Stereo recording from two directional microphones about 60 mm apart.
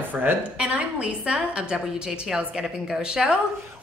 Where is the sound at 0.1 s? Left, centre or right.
Right.